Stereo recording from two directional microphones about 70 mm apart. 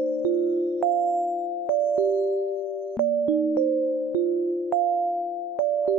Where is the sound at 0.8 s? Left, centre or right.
Centre.